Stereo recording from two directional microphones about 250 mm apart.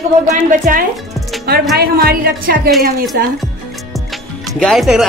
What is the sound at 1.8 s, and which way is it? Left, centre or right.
Speech, right.